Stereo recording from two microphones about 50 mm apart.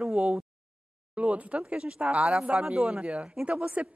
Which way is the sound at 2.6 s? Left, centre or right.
Centre.